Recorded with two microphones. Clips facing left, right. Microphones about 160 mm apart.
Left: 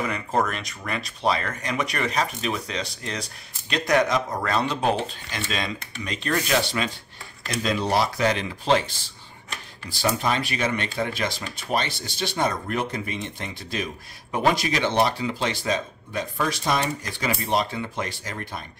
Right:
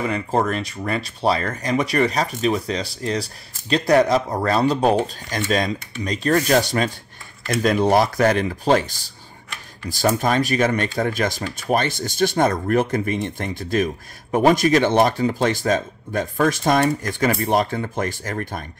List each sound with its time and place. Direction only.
0.0 s speech: 30° right (ahead or behind); by 18.7 s 50° right (ahead or behind)